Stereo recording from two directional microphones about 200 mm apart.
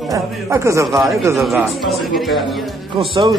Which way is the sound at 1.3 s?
Centre (ahead or behind).